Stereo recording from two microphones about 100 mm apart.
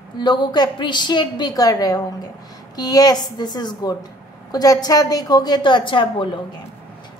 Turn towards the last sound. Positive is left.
turn(degrees=55)  # may be behind; listen again after turning